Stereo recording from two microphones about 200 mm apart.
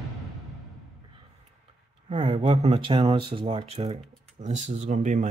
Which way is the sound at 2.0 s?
25° right (ahead or behind).